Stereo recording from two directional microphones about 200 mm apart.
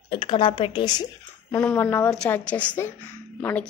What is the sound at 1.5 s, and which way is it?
A woman's voice, 10° left (ahead or behind).